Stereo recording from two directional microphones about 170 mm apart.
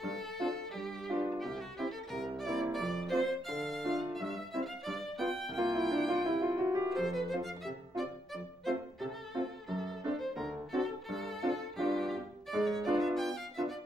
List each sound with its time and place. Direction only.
0.0 s violin: centre (ahead or behind)
1.4 s music: centre (ahead or behind)
2.7 s violin: centre (ahead or behind)
6.0 s music: 20° right (ahead or behind)
6.9 s violin: centre (ahead or behind)